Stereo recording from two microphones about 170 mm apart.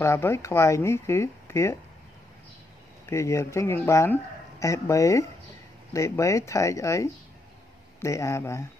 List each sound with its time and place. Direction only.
0.0 s speech: 15° left (ahead or behind)
3.1 s speech: 15° left (ahead or behind)